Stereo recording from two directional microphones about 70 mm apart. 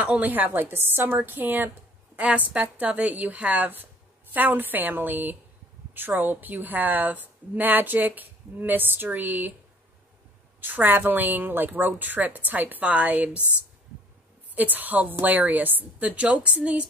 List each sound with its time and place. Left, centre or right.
0.0 s a woman's voice: right
10.6 s a woman's voice: right
14.5 s a woman's voice: right